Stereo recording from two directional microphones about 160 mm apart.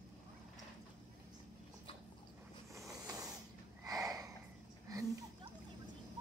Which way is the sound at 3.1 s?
20° right (ahead or behind).